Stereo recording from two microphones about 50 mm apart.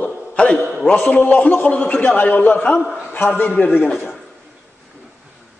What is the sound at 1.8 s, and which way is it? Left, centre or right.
A man's voice, left.